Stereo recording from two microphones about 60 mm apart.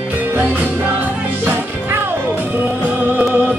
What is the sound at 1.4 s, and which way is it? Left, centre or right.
Music, right.